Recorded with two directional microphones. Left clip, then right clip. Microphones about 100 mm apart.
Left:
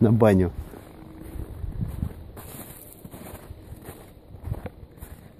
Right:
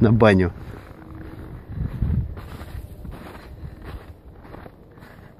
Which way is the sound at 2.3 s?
25° left (ahead or behind).